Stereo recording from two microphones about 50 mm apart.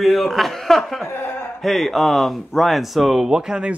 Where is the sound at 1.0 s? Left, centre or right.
Left.